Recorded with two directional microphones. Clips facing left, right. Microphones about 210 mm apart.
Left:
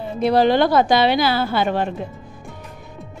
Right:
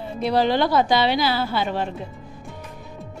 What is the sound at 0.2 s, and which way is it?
Speech, 50° left (ahead or behind).